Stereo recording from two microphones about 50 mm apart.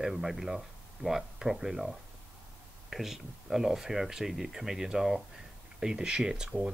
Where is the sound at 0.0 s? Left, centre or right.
Centre.